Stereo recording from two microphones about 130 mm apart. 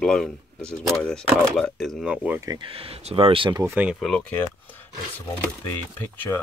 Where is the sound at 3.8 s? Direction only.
5° right (ahead or behind).